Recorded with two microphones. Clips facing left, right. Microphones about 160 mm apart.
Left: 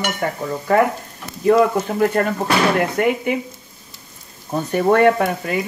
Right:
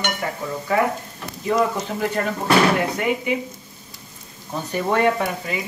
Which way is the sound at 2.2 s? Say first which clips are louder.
Left 1 dB; 55° left (ahead or behind).